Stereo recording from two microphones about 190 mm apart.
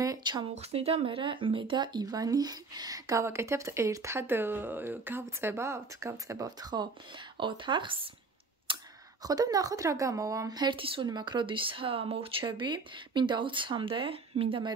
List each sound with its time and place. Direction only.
0.0 s speech: 20° right (ahead or behind)
8.7 s computer keyboard: 25° right (ahead or behind)
9.2 s speech: 20° right (ahead or behind)